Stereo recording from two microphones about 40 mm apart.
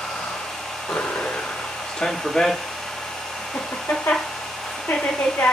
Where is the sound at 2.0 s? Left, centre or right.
Centre.